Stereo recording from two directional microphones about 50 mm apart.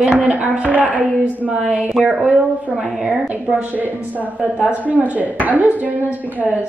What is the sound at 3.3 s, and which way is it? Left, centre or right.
A woman's voice, right.